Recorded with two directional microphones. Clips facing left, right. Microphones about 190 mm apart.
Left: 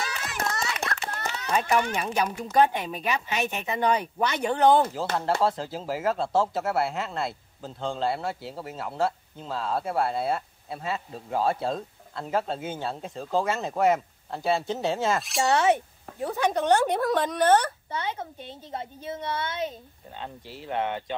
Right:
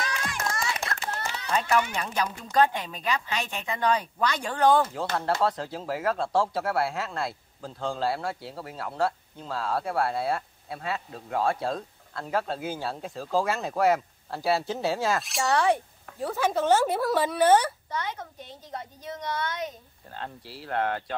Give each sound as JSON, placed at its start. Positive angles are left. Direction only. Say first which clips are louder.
{"t": 0.9, "sound": "run", "louder": "left 1 dB", "side_deg": -25}
{"t": 1.5, "sound": "speech", "louder": "left 1 dB", "side_deg": 15}
{"t": 4.9, "sound": "speech", "louder": "left 1 dB", "side_deg": 0}
{"t": 15.4, "sound": "speech", "louder": "left 2 dB", "side_deg": 25}
{"t": 16.3, "sound": "speech", "louder": "even", "side_deg": -5}
{"t": 17.8, "sound": "a woman's voice", "louder": "left 2 dB", "side_deg": 25}
{"t": 20.1, "sound": "speech", "louder": "even", "side_deg": 0}